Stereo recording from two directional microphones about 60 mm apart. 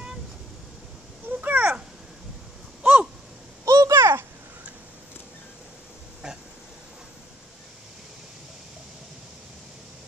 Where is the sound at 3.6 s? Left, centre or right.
Right.